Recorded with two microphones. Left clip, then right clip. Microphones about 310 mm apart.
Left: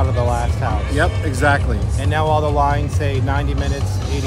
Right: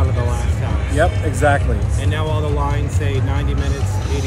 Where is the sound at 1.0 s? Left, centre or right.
Centre.